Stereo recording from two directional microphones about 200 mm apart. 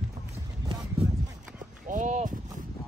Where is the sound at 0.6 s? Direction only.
20° right (ahead or behind).